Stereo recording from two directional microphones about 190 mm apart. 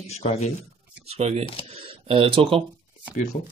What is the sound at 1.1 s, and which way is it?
Speech, 30° right (ahead or behind).